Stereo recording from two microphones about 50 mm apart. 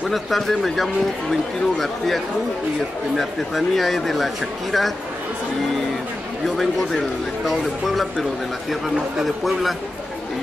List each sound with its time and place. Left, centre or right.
0.1 s a man's voice: centre
6.4 s a man's voice: centre